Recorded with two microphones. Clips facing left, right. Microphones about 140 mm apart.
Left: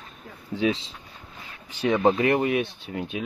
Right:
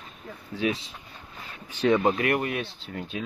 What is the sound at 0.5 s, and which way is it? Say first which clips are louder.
Speech: left 3 dB; 25° left (ahead or behind).